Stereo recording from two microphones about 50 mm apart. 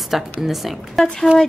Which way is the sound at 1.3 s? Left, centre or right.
Right.